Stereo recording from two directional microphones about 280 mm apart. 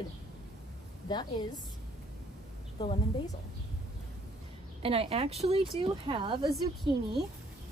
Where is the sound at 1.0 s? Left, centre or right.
Centre.